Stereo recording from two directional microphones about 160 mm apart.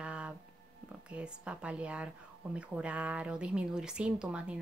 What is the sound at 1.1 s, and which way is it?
Speech, 5° right (ahead or behind).